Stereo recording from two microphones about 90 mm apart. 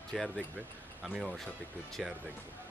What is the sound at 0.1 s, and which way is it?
Speech, centre (ahead or behind).